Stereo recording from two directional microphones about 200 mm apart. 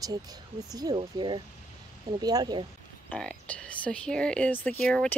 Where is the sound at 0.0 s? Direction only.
20° right (ahead or behind).